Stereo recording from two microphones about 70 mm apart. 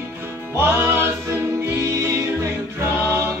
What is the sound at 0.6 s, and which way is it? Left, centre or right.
Music, right.